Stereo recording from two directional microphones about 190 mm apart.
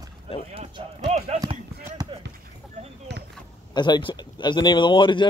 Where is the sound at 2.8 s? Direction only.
35° right (ahead or behind).